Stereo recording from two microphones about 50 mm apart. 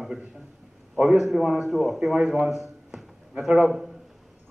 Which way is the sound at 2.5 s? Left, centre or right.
Centre.